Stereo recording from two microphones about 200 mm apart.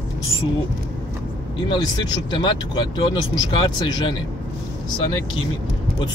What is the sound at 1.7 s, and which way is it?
Speech, 20° left (ahead or behind).